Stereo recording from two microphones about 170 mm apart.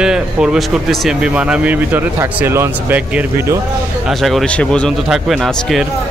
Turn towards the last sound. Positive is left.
turn(degrees=0)  # may be behind; listen again after turning